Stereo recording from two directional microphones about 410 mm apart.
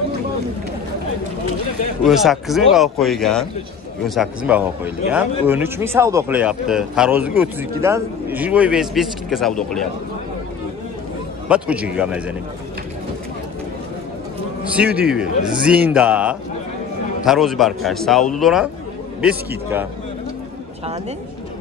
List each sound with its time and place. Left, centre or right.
2.0 s a man's voice: centre
11.4 s a man's voice: centre
14.6 s a man's voice: centre